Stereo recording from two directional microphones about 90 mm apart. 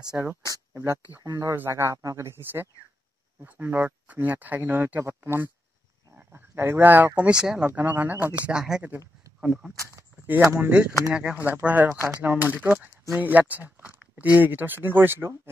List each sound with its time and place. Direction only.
0.1 s speech: 20° right (ahead or behind)
1.2 s speech: 35° right (ahead or behind); by 7.1 s 20° right (ahead or behind)
7.2 s speech: 10° right (ahead or behind)
9.8 s speech: 35° right (ahead or behind)
11.1 s speech: 15° right (ahead or behind)